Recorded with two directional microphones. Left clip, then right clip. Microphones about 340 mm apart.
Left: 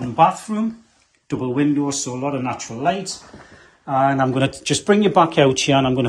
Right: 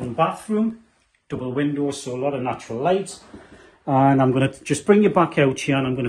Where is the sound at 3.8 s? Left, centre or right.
Centre.